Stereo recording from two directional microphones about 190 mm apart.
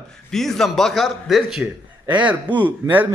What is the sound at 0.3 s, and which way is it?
A man's voice, centre (ahead or behind).